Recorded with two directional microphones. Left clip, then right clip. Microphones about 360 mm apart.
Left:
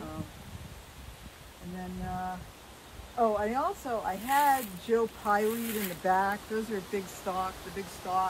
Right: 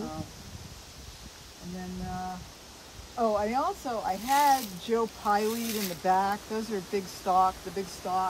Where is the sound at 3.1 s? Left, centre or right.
Centre.